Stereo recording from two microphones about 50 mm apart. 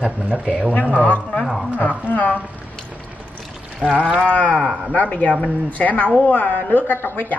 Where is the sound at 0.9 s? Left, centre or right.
Left.